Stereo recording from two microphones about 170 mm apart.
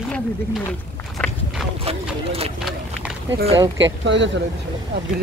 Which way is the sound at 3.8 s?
90° right.